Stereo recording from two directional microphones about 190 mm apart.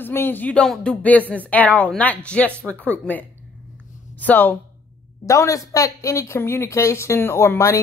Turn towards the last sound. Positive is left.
turn(degrees=15)  # may be behind; listen again after turning